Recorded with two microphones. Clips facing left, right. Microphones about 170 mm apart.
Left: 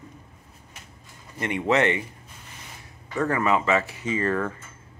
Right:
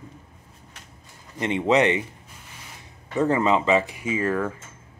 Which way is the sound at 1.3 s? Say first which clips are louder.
Right 3 dB; 20° right (ahead or behind).